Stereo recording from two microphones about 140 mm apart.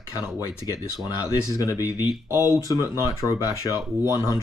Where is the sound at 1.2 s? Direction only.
25° left (ahead or behind).